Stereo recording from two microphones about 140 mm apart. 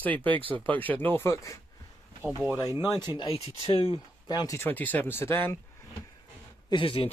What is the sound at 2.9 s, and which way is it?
Speech, 30° left (ahead or behind).